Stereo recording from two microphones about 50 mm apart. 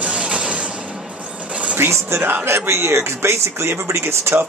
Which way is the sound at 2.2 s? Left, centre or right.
Right.